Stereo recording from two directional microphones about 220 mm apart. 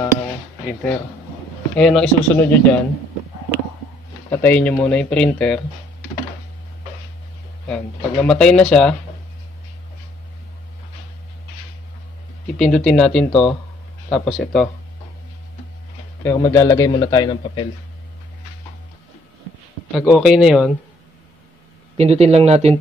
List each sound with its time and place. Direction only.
1.8 s speech: 5° left (ahead or behind)
4.3 s speech: 10° left (ahead or behind)
7.6 s speech: 5° left (ahead or behind)
12.5 s speech: 5° left (ahead or behind)
13.3 s speech: 25° left (ahead or behind)
14.1 s speech: centre (ahead or behind)
16.3 s a man's voice: 15° left (ahead or behind)
19.9 s speech: centre (ahead or behind)
21.9 s speech: 30° right (ahead or behind)